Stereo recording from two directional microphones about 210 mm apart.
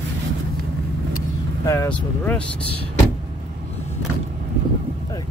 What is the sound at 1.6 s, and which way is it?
Speech, 15° left (ahead or behind).